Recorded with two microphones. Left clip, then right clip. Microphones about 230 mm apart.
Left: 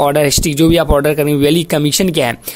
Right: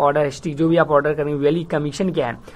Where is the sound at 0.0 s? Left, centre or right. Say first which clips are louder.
Left 6 dB; left.